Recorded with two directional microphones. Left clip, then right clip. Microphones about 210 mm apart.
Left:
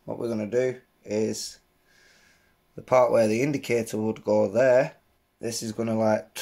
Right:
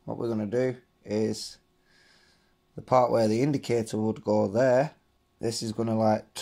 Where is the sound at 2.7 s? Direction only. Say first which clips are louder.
Left 3 dB; 20° right (ahead or behind).